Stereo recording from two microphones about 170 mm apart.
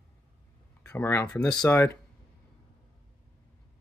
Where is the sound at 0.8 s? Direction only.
15° left (ahead or behind).